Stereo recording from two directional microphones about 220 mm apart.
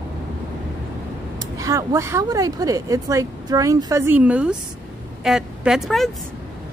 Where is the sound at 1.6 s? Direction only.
15° right (ahead or behind).